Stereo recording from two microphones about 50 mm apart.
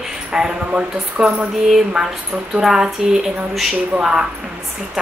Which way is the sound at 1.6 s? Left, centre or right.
Centre.